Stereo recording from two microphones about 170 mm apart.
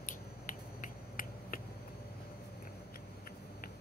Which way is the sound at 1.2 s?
55° left (ahead or behind).